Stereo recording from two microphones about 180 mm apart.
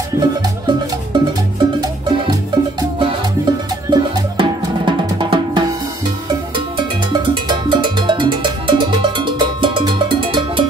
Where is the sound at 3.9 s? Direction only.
25° right (ahead or behind).